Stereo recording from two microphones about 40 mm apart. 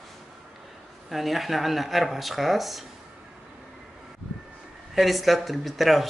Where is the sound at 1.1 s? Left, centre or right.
Centre.